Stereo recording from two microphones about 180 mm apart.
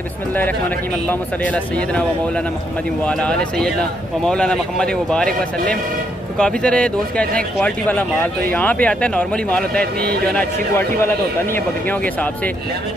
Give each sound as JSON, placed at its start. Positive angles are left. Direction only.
{"t": 1.4, "sound": "speech", "side_deg": 5}